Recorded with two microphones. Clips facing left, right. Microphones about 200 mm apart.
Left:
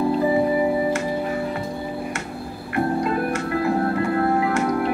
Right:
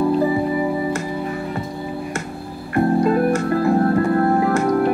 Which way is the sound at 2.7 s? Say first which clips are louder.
Right 5 dB; 40° right (ahead or behind).